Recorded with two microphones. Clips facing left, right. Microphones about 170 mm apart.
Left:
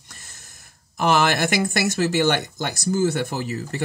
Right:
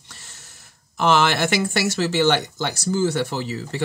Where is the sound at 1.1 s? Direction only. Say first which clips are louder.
Even; 40° left (ahead or behind).